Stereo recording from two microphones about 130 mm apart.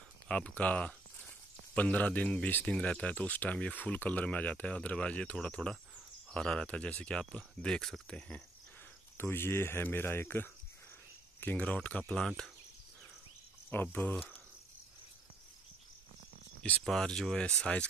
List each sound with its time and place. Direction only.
0.3 s speech: 10° left (ahead or behind)
9.1 s speech: 20° left (ahead or behind)
13.7 s speech: 15° left (ahead or behind)
16.8 s speech: 5° left (ahead or behind)